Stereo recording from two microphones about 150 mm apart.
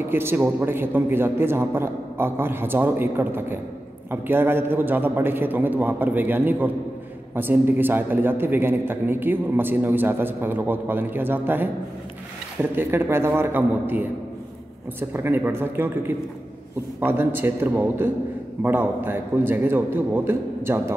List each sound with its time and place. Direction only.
0.1 s a man's voice: 15° right (ahead or behind)
12.7 s a man's voice: 15° right (ahead or behind)